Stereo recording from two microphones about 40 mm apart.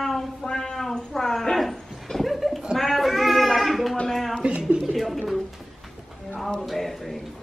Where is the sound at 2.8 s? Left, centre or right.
Centre.